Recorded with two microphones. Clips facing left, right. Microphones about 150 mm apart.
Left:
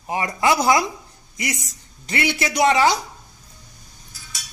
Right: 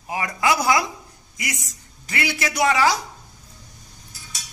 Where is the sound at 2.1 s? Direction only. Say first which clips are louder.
Left 3 dB; 25° left (ahead or behind).